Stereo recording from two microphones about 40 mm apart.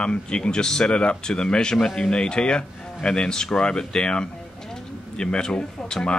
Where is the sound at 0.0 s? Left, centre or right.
Left.